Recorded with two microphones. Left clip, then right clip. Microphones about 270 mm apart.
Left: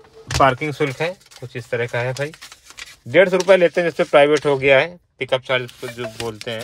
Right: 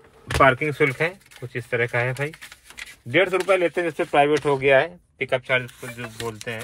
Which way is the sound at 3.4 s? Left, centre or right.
Left.